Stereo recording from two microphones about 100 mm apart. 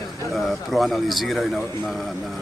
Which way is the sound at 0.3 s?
Centre (ahead or behind).